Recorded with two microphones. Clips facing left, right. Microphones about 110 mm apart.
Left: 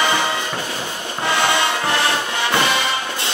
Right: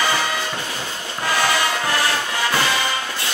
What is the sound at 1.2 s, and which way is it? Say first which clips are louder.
Music: left 2 dB; 25° left (ahead or behind).